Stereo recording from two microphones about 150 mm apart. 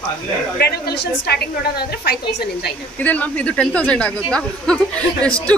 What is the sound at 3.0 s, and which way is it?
Speech, 10° left (ahead or behind).